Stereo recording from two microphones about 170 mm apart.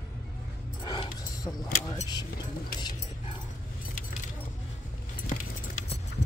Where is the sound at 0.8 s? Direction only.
25° left (ahead or behind).